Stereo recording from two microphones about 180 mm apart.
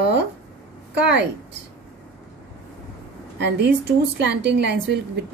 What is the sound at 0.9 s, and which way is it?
Speech, 75° right (ahead or behind).